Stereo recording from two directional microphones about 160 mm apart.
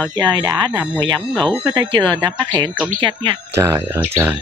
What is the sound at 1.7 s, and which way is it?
Speech, 25° right (ahead or behind).